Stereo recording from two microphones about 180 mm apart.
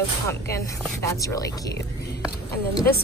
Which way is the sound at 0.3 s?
15° left (ahead or behind).